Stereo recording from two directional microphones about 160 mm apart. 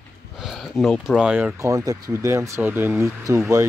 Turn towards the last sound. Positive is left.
turn(degrees=-15)  # may be behind; listen again after turning